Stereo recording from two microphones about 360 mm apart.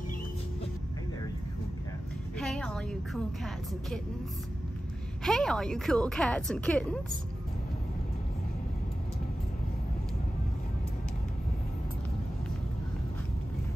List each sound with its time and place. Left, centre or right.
2.3 s a woman's voice: centre
5.2 s a woman's voice: centre